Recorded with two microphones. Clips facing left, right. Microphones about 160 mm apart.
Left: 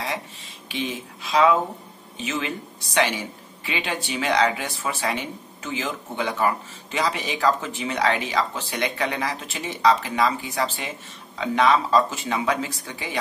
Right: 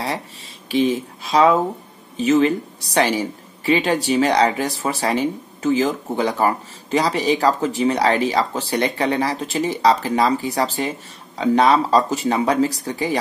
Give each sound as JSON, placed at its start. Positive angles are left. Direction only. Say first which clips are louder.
{"t": 0.7, "sound": "speech", "louder": "right 11 dB", "side_deg": -35}